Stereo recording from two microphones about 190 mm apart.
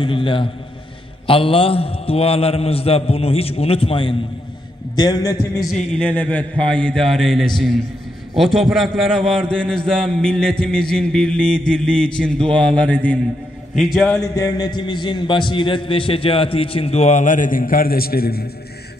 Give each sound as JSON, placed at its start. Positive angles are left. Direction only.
{"t": 0.0, "sound": "a man's voice", "side_deg": 25}
{"t": 5.6, "sound": "a man's voice", "side_deg": 0}
{"t": 14.1, "sound": "a man's voice", "side_deg": 20}